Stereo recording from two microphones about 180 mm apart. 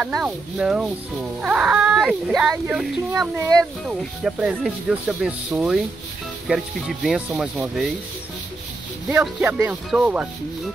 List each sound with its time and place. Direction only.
0.0 s speech: 5° right (ahead or behind)
2.5 s music: 5° right (ahead or behind)
3.3 s speech: 20° right (ahead or behind)
3.8 s speech: 5° right (ahead or behind)
9.1 s music: 10° right (ahead or behind)